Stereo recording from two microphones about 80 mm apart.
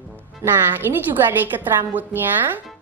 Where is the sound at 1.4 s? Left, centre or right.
Right.